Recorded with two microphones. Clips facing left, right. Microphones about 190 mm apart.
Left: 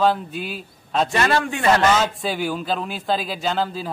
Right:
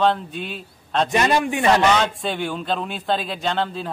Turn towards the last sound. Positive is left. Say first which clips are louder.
# even
turn(degrees=5)  # may be behind; listen again after turning